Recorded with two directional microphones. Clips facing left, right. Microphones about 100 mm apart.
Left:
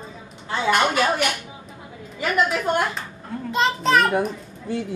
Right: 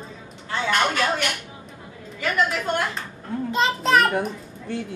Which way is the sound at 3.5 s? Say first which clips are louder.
Left 1 dB; centre (ahead or behind).